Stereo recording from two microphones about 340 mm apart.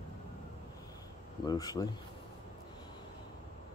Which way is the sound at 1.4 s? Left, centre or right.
Centre.